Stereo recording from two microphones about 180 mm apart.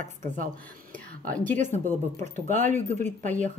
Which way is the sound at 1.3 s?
10° left (ahead or behind).